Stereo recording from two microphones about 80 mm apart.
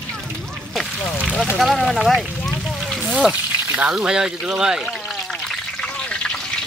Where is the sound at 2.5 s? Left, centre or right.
Centre.